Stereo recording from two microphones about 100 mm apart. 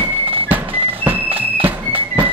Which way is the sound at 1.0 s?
20° right (ahead or behind).